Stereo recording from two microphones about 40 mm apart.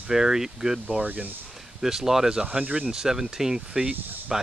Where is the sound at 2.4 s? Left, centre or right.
Right.